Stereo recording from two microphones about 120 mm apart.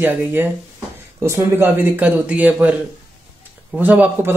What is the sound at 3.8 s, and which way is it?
Speech, 15° right (ahead or behind).